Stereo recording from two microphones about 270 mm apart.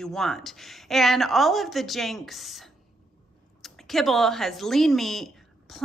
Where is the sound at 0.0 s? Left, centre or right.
Centre.